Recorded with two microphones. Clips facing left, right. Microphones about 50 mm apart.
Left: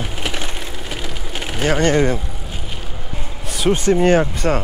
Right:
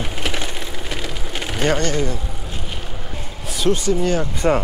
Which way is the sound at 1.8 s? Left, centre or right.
Left.